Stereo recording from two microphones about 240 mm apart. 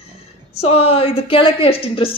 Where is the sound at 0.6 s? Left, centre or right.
Left.